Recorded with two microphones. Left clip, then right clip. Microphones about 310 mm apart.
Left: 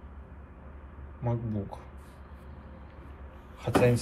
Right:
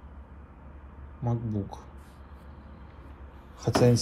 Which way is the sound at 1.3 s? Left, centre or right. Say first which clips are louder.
Even; centre.